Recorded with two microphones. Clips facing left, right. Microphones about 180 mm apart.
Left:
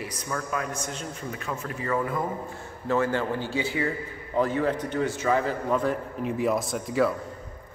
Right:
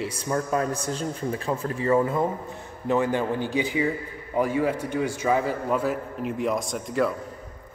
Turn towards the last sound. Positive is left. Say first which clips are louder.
# left 1 dB
turn(degrees=0)  # may be behind; listen again after turning